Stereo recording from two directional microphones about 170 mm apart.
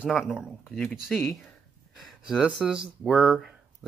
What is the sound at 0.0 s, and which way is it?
Speech, 5° right (ahead or behind).